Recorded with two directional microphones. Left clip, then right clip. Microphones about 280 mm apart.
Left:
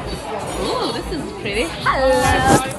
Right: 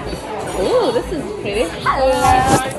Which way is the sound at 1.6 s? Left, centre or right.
Centre.